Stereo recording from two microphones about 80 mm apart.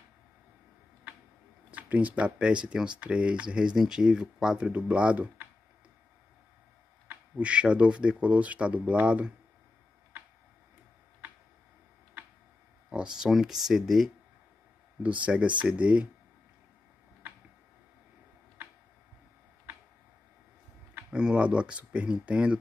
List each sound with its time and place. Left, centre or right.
1.7 s speech: centre
7.1 s speech: centre
12.9 s speech: centre
15.0 s speech: centre
20.9 s speech: centre